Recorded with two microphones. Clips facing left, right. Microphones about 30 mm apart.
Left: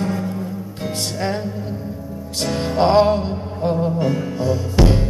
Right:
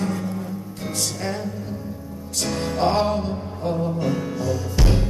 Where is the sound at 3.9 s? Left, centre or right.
Centre.